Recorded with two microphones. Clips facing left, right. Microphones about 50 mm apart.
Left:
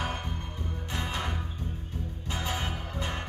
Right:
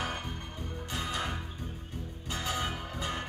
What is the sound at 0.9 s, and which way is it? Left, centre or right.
Music, left.